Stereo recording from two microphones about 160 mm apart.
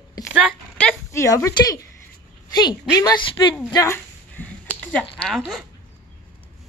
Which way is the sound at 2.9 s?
25° left (ahead or behind).